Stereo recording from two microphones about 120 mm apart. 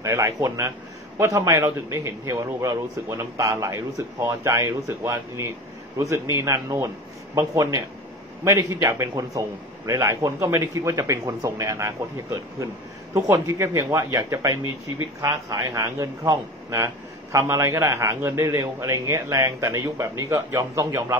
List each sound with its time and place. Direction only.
0.0 s a man's voice: 25° right (ahead or behind)